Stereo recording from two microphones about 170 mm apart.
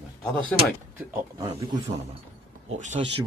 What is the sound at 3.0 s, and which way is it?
Speech, 35° right (ahead or behind).